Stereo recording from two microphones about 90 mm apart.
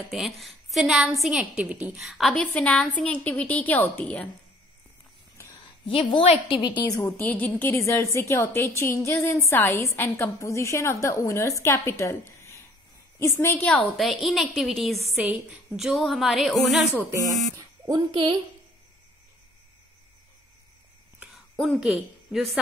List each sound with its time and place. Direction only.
0.1 s a woman's voice: centre (ahead or behind)
1.4 s a woman's voice: 15° right (ahead or behind)
2.3 s a woman's voice: 10° left (ahead or behind)
5.9 s a woman's voice: 75° left (ahead or behind)
6.8 s a woman's voice: 40° left (ahead or behind)
7.2 s a woman's voice: 15° left (ahead or behind)
13.9 s a woman's voice: centre (ahead or behind)
15.2 s a woman's voice: 15° right (ahead or behind)
15.8 s a woman's voice: centre (ahead or behind)
17.6 s a sound: 45° right (ahead or behind)
21.5 s a woman's voice: centre (ahead or behind)